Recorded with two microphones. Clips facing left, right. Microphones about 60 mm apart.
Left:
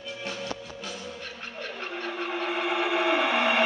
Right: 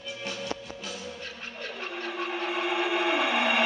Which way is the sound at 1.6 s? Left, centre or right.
Centre.